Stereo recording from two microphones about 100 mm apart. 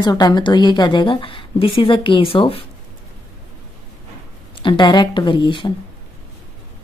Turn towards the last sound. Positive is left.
turn(degrees=50)  # may be behind; listen again after turning